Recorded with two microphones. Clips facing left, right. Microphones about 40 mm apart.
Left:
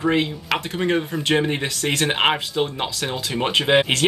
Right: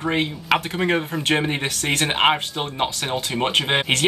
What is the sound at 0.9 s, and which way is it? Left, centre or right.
Speech, centre.